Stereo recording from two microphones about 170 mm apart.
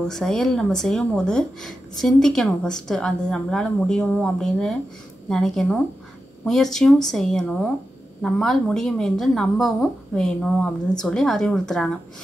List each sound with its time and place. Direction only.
0.1 s speech: 5° left (ahead or behind)